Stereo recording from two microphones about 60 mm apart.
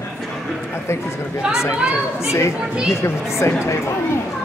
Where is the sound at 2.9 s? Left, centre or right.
Left.